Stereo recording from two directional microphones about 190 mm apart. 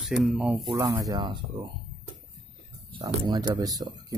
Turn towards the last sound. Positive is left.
turn(degrees=-20)  # may be behind; listen again after turning